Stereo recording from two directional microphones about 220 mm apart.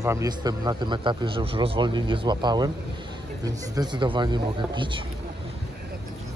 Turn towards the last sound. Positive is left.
turn(degrees=-20)  # may be behind; listen again after turning